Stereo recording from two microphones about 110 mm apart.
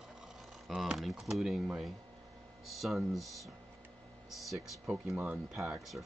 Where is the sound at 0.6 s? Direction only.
Centre (ahead or behind).